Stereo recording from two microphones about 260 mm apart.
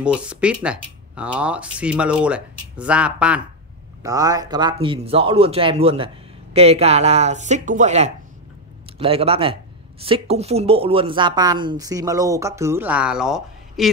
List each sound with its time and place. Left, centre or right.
0.0 s a man's voice: centre